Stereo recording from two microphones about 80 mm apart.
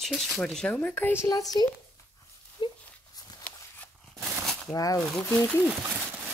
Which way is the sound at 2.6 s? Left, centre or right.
Left.